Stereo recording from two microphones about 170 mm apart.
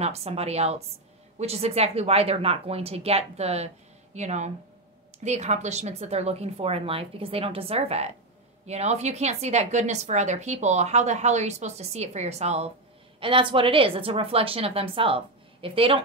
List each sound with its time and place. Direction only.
0.0 s speech: 40° right (ahead or behind)